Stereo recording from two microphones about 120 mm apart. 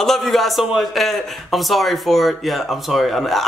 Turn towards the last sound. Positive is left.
turn(degrees=0)  # may be behind; listen again after turning